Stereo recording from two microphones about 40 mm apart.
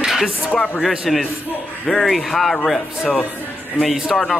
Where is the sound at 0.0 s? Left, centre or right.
Centre.